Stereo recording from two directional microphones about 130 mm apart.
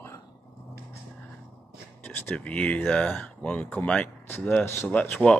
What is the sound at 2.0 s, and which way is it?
Speech, 10° left (ahead or behind).